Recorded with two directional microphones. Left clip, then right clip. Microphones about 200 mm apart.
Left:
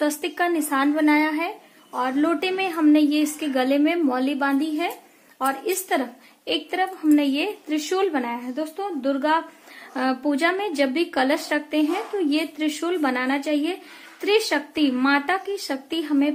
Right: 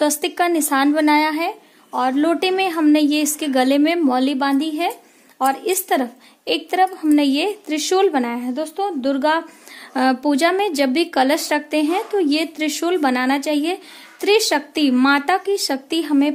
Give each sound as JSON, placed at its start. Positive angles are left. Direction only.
{"t": 0.0, "sound": "speech", "side_deg": -45}